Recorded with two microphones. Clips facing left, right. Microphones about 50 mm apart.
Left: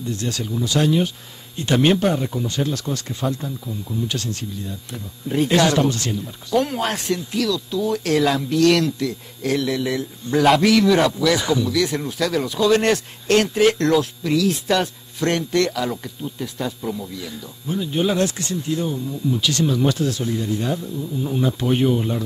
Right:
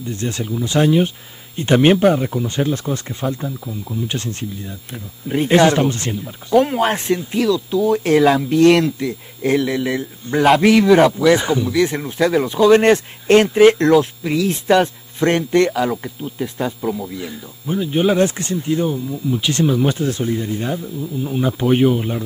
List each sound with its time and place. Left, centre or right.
0.1 s speech: right
20.8 s speech: centre